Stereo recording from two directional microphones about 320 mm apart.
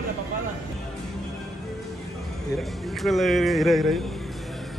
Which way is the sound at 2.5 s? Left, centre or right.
Centre.